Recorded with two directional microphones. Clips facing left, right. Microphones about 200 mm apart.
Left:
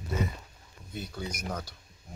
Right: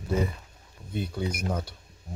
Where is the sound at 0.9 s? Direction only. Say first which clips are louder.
Right 7 dB; 25° right (ahead or behind).